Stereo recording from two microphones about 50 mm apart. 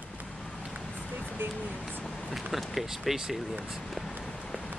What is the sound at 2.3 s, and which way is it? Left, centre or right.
Speech, centre.